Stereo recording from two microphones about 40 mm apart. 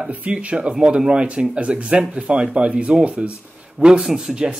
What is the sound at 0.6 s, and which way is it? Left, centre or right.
Speech, right.